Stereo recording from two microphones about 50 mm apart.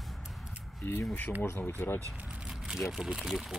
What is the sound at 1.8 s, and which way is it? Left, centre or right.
Speech, left.